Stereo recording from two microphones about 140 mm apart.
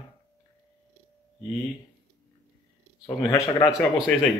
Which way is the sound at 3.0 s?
25° left (ahead or behind).